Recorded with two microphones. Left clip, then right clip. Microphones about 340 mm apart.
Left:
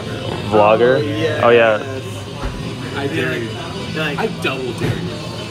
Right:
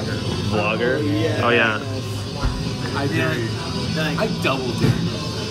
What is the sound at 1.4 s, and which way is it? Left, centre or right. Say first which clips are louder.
Speech: left 7 dB; centre.